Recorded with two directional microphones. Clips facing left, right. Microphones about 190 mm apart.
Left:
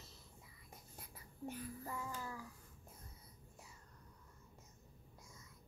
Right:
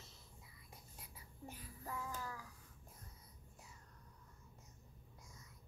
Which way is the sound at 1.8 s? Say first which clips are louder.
Left 1 dB; 10° left (ahead or behind).